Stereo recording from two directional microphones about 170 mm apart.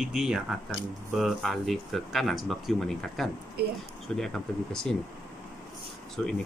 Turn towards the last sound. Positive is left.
turn(degrees=5)  # may be behind; listen again after turning